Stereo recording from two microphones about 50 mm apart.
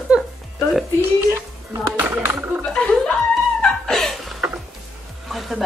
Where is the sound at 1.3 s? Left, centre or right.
Right.